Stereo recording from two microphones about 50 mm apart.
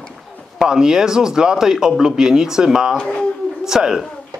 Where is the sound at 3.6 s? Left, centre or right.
Centre.